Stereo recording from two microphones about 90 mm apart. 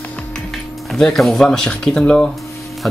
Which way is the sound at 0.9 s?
5° left (ahead or behind).